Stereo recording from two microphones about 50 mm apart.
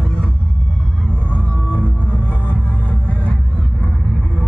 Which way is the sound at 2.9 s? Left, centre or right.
Left.